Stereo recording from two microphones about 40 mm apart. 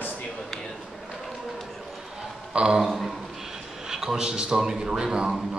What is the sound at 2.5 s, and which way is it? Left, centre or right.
Speech, centre.